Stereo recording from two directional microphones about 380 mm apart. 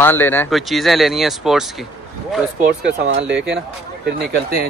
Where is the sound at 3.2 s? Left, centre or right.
Centre.